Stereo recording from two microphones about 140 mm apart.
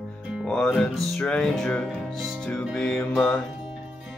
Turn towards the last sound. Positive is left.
turn(degrees=10)  # may be behind; listen again after turning